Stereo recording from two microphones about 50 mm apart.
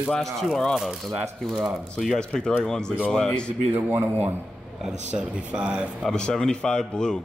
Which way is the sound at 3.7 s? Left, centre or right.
Right.